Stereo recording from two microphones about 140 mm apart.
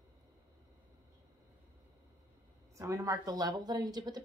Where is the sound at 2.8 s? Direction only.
20° right (ahead or behind).